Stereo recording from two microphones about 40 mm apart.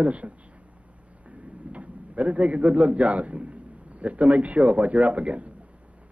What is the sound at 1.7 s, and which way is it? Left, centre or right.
A man's voice, right.